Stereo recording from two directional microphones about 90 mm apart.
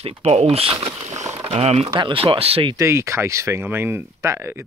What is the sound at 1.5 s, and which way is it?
Speech, 85° right.